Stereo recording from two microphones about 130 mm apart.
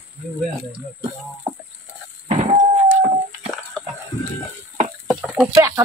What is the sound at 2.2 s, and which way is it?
Train, 55° right (ahead or behind).